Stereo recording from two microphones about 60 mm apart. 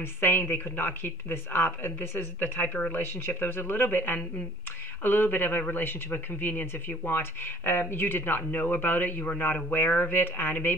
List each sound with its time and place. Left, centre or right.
0.0 s speech: left